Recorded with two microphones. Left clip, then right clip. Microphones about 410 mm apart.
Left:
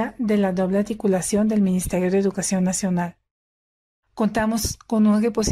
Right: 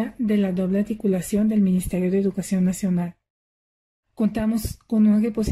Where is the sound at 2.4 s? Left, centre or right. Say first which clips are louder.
Left 2 dB; left.